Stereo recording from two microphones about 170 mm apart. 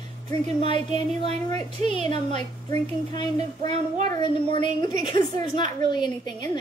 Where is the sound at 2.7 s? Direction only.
25° left (ahead or behind).